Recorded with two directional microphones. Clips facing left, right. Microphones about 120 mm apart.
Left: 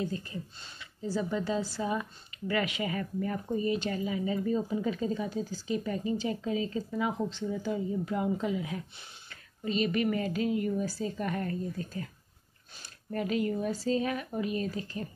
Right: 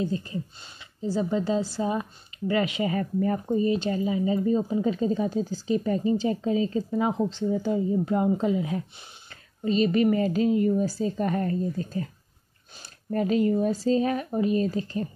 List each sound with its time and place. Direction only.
0.0 s a woman's voice: 25° right (ahead or behind)
13.1 s a woman's voice: 35° right (ahead or behind)